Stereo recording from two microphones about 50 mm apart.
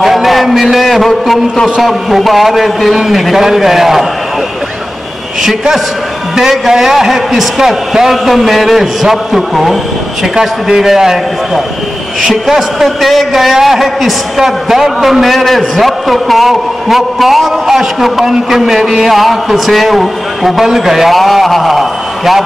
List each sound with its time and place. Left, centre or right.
0.0 s a man's voice: centre
5.4 s a man's voice: centre